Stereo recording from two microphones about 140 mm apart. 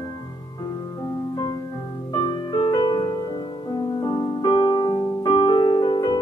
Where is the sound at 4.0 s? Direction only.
30° left (ahead or behind).